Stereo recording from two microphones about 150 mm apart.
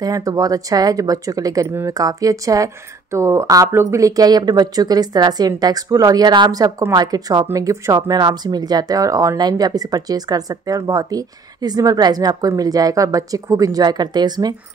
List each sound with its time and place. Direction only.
0.0 s speech: 25° right (ahead or behind)